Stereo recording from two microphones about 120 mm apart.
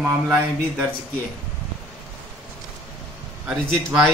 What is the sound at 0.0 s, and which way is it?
Speech, 15° right (ahead or behind).